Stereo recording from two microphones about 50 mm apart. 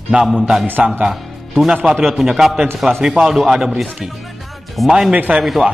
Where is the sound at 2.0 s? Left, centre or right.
Centre.